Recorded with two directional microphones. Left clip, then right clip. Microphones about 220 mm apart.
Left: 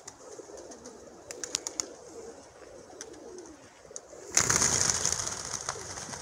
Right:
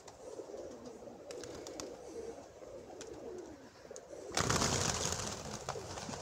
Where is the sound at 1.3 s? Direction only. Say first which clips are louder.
Left 10 dB; 15° left (ahead or behind).